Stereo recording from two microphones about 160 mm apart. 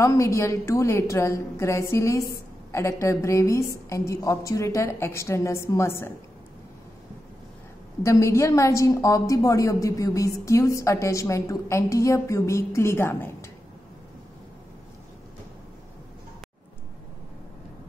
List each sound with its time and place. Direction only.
0.0 s a woman's voice: 20° left (ahead or behind)
8.0 s a woman's voice: 20° left (ahead or behind)